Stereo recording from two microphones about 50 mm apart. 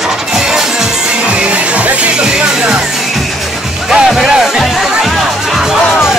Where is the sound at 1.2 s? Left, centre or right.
Right.